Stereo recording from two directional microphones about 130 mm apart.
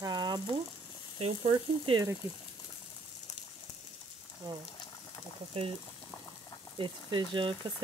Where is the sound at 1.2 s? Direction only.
45° right (ahead or behind).